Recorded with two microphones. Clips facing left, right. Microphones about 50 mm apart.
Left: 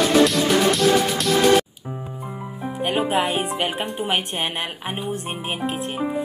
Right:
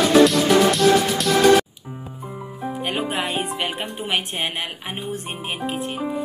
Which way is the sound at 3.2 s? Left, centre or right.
Left.